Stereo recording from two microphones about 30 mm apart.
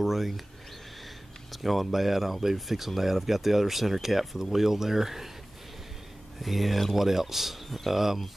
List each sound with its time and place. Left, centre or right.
0.0 s speech: centre
1.5 s speech: centre
6.4 s speech: centre